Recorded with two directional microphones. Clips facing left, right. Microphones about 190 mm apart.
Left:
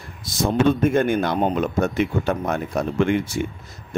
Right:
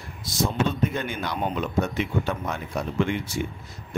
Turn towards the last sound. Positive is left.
turn(degrees=55)  # may be behind; listen again after turning